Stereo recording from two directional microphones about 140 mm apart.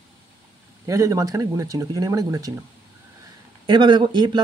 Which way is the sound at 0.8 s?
25° right (ahead or behind).